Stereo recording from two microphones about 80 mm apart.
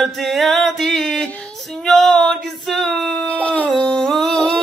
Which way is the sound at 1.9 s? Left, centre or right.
Centre.